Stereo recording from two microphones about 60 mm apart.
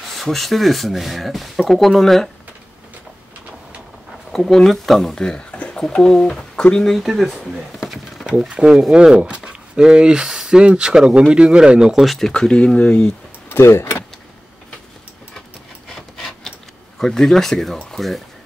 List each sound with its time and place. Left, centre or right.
0.1 s speech: centre
4.3 s speech: centre
7.0 s speech: centre
8.5 s speech: centre
13.5 s a sound: left
15.9 s rub: centre
17.0 s speech: centre